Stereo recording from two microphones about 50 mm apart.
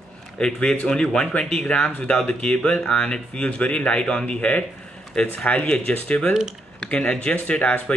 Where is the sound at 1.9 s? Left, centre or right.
Left.